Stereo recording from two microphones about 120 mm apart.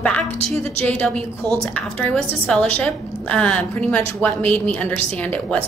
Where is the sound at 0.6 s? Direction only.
55° right (ahead or behind).